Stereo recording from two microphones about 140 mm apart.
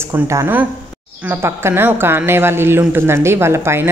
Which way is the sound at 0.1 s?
15° right (ahead or behind).